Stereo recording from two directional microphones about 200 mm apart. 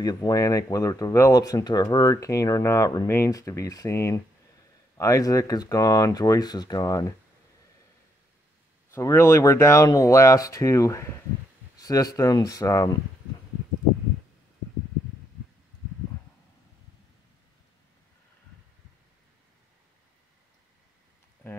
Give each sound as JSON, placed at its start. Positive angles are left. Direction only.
{"t": 0.0, "sound": "speech", "side_deg": 20}
{"t": 8.9, "sound": "speech", "side_deg": 15}
{"t": 21.4, "sound": "a sound", "side_deg": 10}